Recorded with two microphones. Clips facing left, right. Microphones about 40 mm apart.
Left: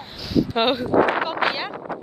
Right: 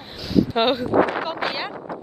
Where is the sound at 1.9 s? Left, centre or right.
Left.